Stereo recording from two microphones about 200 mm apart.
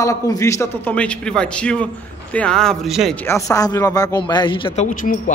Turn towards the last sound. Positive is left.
turn(degrees=40)  # may be behind; listen again after turning